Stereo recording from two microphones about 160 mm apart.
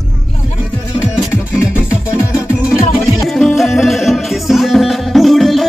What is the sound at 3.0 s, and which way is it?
Music, centre (ahead or behind).